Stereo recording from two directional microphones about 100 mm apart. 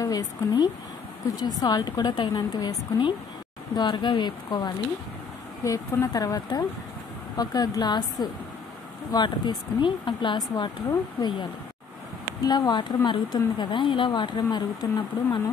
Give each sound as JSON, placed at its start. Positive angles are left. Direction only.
{"t": 0.0, "sound": "speech", "side_deg": 40}
{"t": 5.6, "sound": "speech", "side_deg": 35}
{"t": 10.5, "sound": "speech", "side_deg": 40}
{"t": 12.4, "sound": "speech", "side_deg": 45}